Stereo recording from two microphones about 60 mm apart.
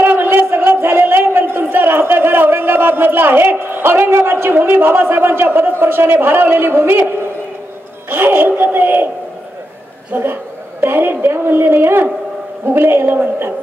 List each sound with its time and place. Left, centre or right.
0.0 s a sound: right
4.3 s a woman's voice: right
10.1 s a woman's voice: right